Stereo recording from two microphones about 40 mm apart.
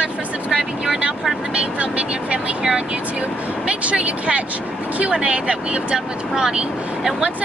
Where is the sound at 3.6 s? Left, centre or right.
Right.